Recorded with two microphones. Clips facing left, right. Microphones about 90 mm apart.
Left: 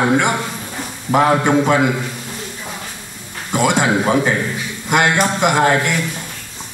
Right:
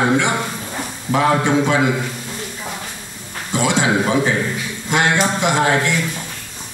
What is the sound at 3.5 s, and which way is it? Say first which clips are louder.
A man's voice: left 2 dB; 50° left (ahead or behind).